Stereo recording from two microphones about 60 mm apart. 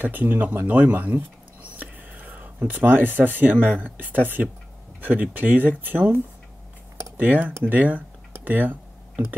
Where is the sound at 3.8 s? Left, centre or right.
Right.